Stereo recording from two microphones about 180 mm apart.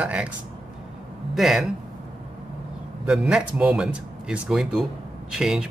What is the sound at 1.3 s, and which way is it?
Speech, centre (ahead or behind).